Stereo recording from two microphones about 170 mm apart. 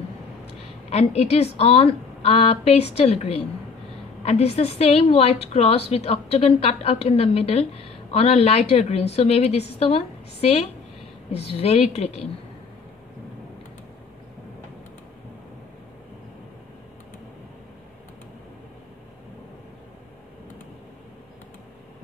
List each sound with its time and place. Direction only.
0.8 s a woman's voice: 40° left (ahead or behind)